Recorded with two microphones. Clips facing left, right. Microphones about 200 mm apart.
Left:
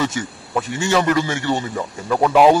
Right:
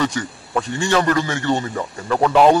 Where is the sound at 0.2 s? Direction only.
10° left (ahead or behind).